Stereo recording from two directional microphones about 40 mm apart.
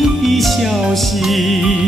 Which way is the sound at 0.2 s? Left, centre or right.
Centre.